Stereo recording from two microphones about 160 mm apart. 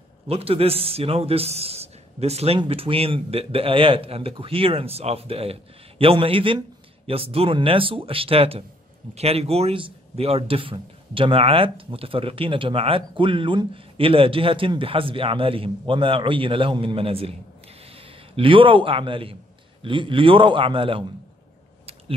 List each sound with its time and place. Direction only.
0.3 s a man's voice: 40° right (ahead or behind)
18.3 s a man's voice: 35° right (ahead or behind)